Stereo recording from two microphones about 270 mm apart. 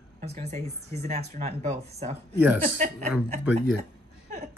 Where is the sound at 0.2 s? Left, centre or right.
Right.